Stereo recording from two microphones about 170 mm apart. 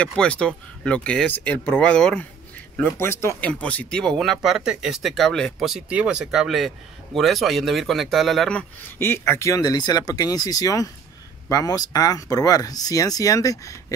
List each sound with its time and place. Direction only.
0.0 s speech: 5° left (ahead or behind)